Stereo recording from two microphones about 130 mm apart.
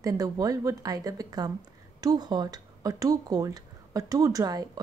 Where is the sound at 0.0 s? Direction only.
25° right (ahead or behind).